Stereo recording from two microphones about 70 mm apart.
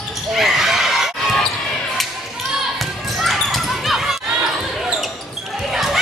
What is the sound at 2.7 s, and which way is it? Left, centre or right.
Basketball bounce, centre.